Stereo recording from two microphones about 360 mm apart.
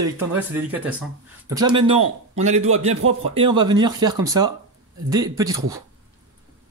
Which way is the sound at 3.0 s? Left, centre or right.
Right.